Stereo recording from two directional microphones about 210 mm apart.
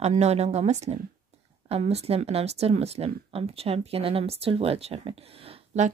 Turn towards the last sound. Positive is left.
turn(degrees=-30)  # may be behind; listen again after turning